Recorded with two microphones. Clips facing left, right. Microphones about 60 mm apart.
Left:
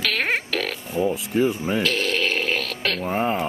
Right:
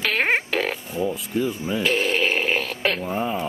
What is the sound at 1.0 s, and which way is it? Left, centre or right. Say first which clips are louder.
Speech: left 4 dB; left.